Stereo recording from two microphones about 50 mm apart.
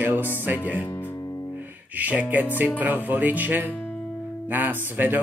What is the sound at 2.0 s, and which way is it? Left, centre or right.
Music, right.